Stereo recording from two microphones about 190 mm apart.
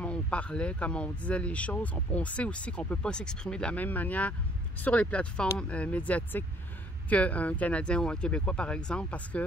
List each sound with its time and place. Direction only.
0.0 s speech: 5° left (ahead or behind)